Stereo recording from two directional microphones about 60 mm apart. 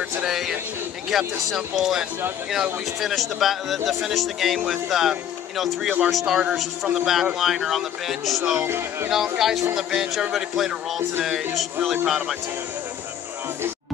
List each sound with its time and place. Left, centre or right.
0.2 s speech: centre
8.6 s speech: right
9.1 s speech: centre